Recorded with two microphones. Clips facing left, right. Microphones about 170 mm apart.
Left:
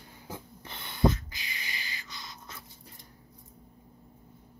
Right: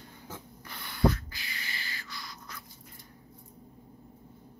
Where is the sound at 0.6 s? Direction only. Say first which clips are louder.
Left 1 dB; 25° left (ahead or behind).